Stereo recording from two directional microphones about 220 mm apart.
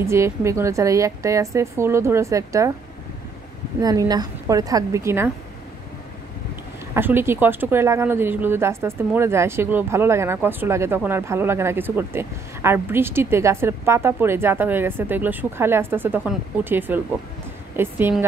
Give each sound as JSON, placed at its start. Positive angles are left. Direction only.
{"t": 0.0, "sound": "speech", "side_deg": -10}
{"t": 3.8, "sound": "speech", "side_deg": -15}
{"t": 6.9, "sound": "speech", "side_deg": -10}